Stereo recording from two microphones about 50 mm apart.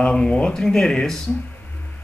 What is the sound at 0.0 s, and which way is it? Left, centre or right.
Speech, centre.